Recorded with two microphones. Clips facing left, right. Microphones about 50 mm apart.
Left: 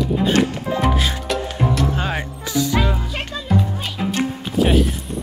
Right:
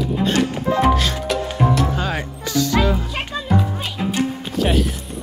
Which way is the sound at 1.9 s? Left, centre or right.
Centre.